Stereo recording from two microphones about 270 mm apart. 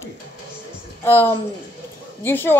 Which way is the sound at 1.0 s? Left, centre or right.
Centre.